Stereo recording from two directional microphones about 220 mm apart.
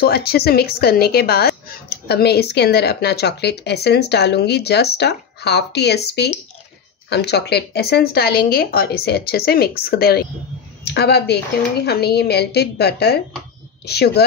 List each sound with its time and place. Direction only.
0.0 s a woman's voice: 45° left (ahead or behind)